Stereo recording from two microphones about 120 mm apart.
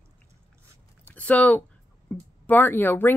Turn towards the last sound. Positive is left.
turn(degrees=15)  # may be behind; listen again after turning